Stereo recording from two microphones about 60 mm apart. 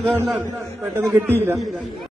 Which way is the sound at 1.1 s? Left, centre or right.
Right.